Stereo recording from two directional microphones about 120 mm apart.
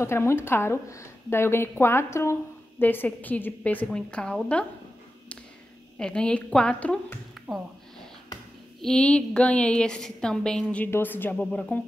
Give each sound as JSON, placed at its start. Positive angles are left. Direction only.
{"t": 0.0, "sound": "a woman's voice", "side_deg": 20}
{"t": 5.9, "sound": "a woman's voice", "side_deg": 5}
{"t": 7.4, "sound": "a sound", "side_deg": 0}
{"t": 8.8, "sound": "a woman's voice", "side_deg": 5}